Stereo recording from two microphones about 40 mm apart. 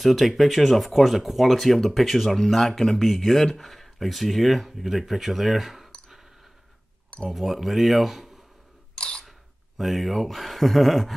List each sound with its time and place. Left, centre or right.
0.0 s speech: centre
7.2 s speech: centre
8.9 s chewing: left
9.8 s speech: centre